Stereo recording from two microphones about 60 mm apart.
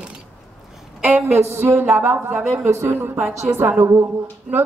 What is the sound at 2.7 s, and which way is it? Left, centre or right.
Speech, right.